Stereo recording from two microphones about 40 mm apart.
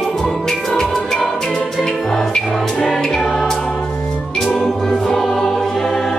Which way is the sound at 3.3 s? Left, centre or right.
Centre.